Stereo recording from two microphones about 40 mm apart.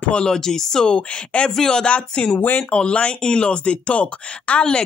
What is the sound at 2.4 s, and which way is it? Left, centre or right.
Speech, left.